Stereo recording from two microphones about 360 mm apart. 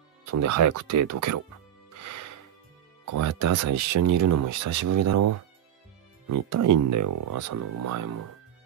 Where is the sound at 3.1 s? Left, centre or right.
Right.